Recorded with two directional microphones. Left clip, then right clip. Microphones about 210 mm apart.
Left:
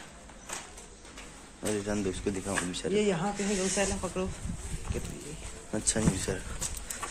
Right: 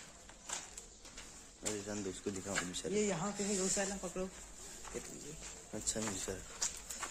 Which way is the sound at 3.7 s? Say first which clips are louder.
Left 8 dB; 35° right (ahead or behind).